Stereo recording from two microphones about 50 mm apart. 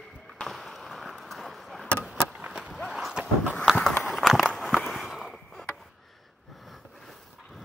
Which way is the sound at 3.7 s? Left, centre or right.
Centre.